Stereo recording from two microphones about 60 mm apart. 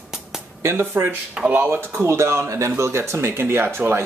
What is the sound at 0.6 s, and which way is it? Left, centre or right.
Speech, right.